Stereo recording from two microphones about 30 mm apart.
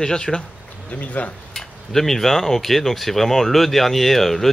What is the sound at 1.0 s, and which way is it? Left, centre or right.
Stir, left.